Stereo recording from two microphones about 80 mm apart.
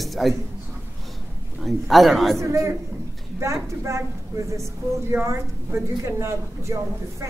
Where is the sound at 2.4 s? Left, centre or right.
Right.